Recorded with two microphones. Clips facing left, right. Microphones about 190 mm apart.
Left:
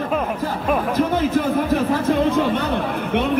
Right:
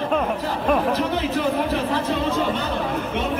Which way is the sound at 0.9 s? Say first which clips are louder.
Left 4 dB; 50° left (ahead or behind).